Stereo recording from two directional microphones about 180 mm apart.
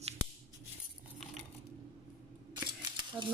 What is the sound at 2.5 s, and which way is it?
Camera, 25° right (ahead or behind).